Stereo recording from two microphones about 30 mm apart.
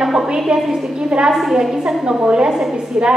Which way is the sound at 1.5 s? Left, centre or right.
Centre.